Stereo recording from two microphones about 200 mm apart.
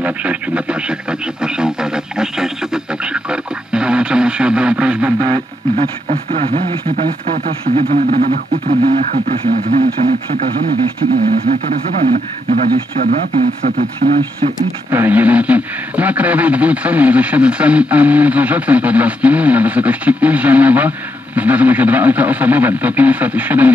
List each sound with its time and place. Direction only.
0.0 s speech: 5° right (ahead or behind)
1.4 s radio: 5° right (ahead or behind)
5.2 s radio: 25° right (ahead or behind)
6.0 s speech: 30° right (ahead or behind); by 14.2 s 50° right (ahead or behind)
14.9 s a man's voice: 10° right (ahead or behind)